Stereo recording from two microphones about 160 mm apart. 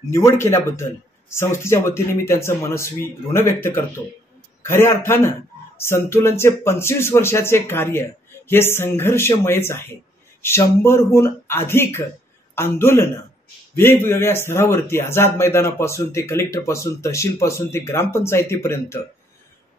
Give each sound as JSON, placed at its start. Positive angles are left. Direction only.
{"t": 0.1, "sound": "speech", "side_deg": 15}